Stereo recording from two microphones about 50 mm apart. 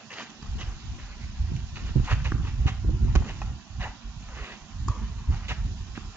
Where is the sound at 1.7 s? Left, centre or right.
Right.